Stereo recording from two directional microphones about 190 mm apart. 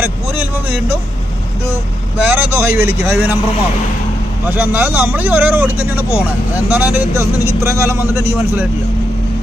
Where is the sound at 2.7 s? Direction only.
55° left (ahead or behind).